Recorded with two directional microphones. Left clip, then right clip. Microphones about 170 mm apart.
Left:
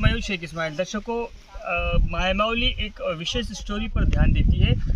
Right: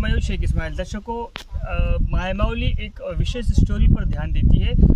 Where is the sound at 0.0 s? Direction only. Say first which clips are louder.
Left 3 dB; 35° right (ahead or behind).